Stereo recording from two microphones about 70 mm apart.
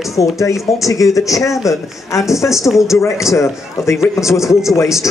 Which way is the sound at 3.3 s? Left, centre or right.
Left.